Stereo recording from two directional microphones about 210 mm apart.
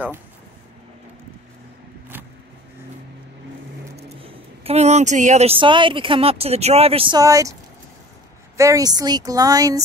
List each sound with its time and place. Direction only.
4.2 s speech: 30° right (ahead or behind)
8.5 s speech: 15° right (ahead or behind)